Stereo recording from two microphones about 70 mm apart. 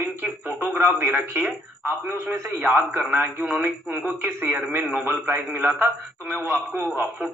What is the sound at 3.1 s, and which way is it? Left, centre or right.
Speech, right.